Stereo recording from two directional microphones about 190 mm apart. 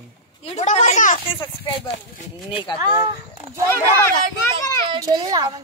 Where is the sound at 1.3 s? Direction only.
25° left (ahead or behind).